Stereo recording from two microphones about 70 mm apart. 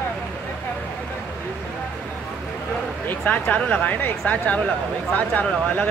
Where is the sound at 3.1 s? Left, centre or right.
Left.